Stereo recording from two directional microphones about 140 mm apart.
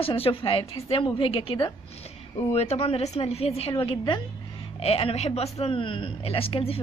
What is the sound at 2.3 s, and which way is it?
Speech, 50° left (ahead or behind).